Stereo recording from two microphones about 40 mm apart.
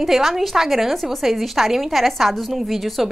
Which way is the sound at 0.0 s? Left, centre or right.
Centre.